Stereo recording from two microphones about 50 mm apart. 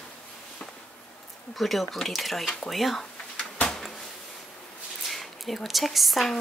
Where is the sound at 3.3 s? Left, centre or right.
Left.